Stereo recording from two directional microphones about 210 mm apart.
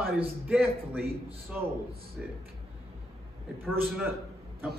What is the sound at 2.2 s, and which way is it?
Speech, 5° right (ahead or behind).